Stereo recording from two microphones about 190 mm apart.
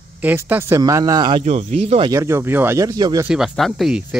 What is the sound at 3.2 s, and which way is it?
Speech, 5° right (ahead or behind).